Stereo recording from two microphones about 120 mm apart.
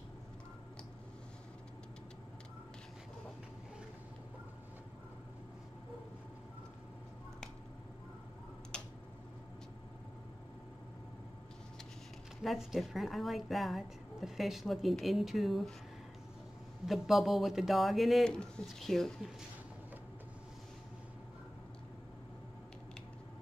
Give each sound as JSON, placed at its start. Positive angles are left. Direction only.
{"t": 8.7, "sound": "finger snapping", "side_deg": 5}
{"t": 12.4, "sound": "a woman's voice", "side_deg": 0}
{"t": 16.8, "sound": "a woman's voice", "side_deg": 0}